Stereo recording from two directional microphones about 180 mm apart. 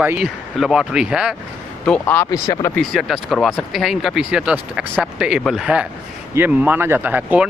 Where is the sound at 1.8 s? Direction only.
10° left (ahead or behind).